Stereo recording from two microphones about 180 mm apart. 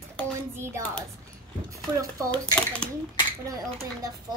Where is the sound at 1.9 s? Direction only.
20° right (ahead or behind).